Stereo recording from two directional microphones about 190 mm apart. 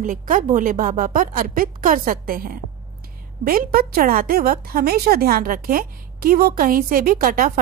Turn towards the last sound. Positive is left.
turn(degrees=-50)  # may be behind; listen again after turning